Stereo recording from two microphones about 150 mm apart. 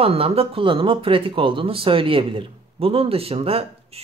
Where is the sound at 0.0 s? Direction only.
40° right (ahead or behind).